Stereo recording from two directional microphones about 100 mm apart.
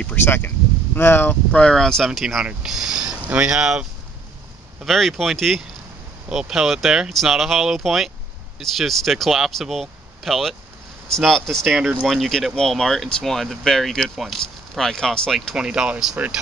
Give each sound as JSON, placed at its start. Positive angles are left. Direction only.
{"t": 0.0, "sound": "speech", "side_deg": 20}
{"t": 4.8, "sound": "speech", "side_deg": 0}
{"t": 15.5, "sound": "speech", "side_deg": -10}